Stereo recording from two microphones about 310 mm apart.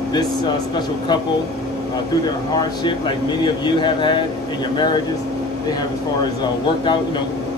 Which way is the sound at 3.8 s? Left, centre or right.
Centre.